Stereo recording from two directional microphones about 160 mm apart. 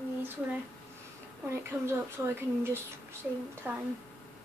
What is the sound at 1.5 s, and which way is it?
Speech, 15° right (ahead or behind).